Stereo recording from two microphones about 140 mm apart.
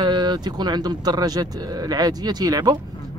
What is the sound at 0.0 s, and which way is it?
Speech, 30° right (ahead or behind).